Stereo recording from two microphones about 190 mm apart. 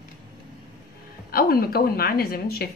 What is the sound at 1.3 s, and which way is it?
A woman's voice, 50° left (ahead or behind).